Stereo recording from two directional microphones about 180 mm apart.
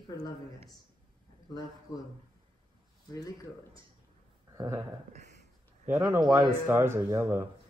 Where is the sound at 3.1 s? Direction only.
20° left (ahead or behind).